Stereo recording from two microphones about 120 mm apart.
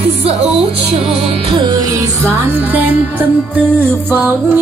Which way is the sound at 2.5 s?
15° right (ahead or behind).